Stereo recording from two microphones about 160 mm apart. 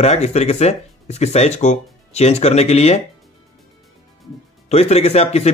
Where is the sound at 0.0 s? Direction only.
45° left (ahead or behind).